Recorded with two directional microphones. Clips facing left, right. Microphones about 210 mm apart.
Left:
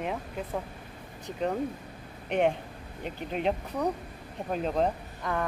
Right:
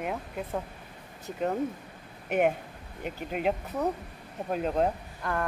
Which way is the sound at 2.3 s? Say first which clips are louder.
Even; 5° right (ahead or behind).